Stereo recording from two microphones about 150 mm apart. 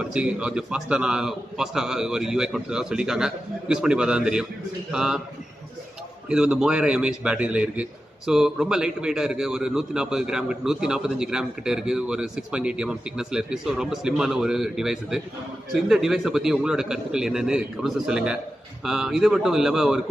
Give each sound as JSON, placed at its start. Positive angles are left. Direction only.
{"t": 0.0, "sound": "a man's voice", "side_deg": -5}
{"t": 6.2, "sound": "a man's voice", "side_deg": -5}